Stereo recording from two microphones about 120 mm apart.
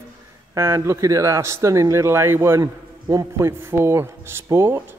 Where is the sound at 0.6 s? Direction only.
20° right (ahead or behind).